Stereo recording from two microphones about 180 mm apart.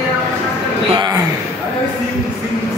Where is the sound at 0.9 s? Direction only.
25° right (ahead or behind).